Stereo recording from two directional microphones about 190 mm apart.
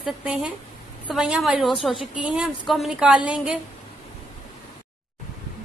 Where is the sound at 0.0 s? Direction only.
5° right (ahead or behind).